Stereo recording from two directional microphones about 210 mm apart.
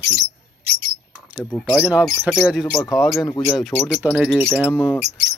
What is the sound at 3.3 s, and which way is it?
Speech, 10° left (ahead or behind).